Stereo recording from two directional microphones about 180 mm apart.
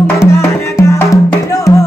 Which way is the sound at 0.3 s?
15° left (ahead or behind).